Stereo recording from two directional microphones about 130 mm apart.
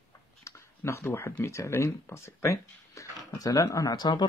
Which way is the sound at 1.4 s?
20° left (ahead or behind).